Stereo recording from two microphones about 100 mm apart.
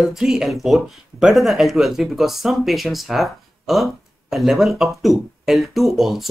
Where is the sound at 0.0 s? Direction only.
5° right (ahead or behind).